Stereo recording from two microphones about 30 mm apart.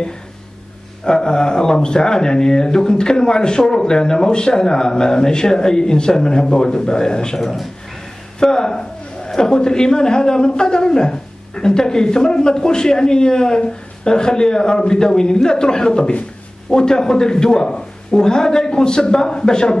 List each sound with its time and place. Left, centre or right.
1.0 s a man's voice: left
8.4 s a man's voice: left